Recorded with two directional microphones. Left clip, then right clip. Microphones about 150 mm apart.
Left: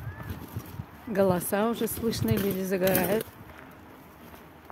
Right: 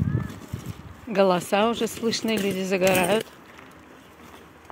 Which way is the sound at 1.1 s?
5° left (ahead or behind).